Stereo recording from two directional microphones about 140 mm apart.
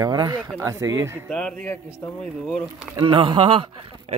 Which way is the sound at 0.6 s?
20° right (ahead or behind).